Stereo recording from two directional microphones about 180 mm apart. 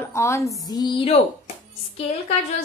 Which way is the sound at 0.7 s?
25° left (ahead or behind).